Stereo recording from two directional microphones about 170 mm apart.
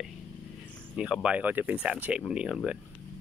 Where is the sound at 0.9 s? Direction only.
5° right (ahead or behind).